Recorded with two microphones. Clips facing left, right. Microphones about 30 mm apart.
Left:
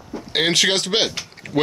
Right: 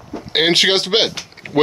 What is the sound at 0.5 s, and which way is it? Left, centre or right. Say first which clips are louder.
Speech: right 4 dB; right.